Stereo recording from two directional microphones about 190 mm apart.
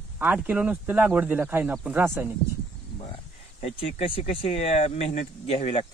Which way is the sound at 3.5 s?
35° left (ahead or behind).